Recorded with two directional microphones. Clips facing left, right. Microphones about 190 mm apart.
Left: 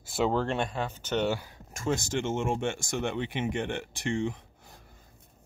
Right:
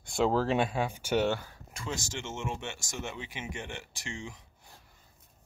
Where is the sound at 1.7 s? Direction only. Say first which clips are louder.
Left 8 dB; 50° left (ahead or behind).